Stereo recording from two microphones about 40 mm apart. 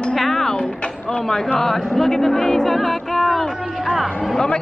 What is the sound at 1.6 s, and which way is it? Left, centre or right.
A man's voice, centre.